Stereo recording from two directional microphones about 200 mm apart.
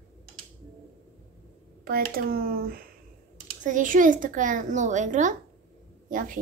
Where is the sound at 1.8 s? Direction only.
50° right (ahead or behind).